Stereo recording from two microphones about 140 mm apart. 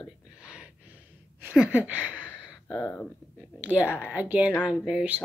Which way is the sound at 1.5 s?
10° right (ahead or behind).